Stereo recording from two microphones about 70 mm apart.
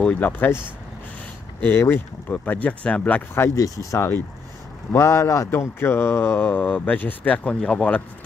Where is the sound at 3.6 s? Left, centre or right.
Left.